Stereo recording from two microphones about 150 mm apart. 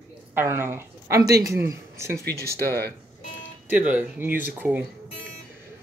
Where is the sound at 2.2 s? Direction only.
90° right.